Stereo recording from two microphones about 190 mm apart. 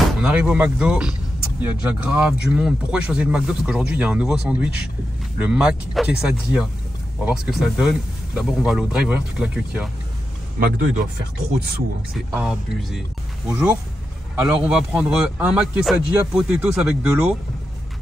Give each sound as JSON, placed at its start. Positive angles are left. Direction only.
{"t": 0.2, "sound": "a man's voice", "side_deg": -5}
{"t": 7.2, "sound": "a man's voice", "side_deg": -5}
{"t": 10.6, "sound": "speech", "side_deg": -55}
{"t": 12.1, "sound": "a man's voice", "side_deg": -5}
{"t": 13.5, "sound": "a man's voice", "side_deg": -15}